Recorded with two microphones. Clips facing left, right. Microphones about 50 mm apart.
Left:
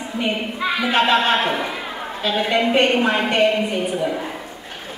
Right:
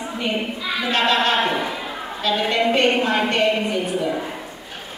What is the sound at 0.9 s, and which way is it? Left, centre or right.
A woman's voice, centre.